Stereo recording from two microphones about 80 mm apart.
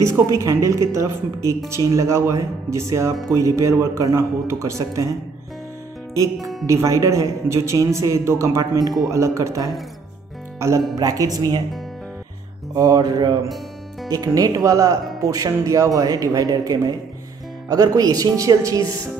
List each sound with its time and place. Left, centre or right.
0.0 s speech: right
6.1 s speech: right
11.0 s speech: right
12.7 s speech: right